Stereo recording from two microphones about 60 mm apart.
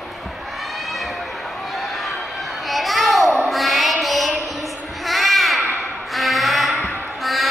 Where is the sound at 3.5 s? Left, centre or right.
Centre.